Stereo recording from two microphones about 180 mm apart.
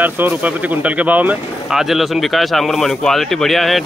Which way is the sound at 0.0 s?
10° right (ahead or behind).